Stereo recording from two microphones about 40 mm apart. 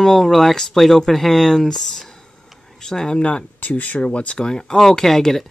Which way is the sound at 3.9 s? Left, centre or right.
Left.